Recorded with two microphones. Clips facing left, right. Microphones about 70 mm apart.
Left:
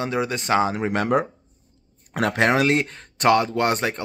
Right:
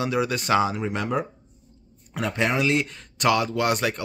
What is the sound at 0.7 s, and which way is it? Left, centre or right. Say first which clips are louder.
Speech: left 5 dB; left.